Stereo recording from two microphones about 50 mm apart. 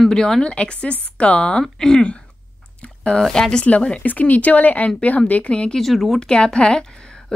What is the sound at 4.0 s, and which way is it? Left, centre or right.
Speech, left.